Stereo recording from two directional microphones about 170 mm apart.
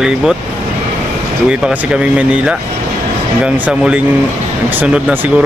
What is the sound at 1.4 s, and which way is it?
Speech, 5° right (ahead or behind).